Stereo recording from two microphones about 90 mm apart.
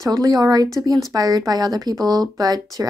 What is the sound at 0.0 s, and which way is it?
Speech, 40° right (ahead or behind).